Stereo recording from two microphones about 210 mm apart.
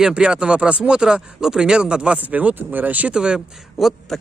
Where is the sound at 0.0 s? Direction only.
5° right (ahead or behind).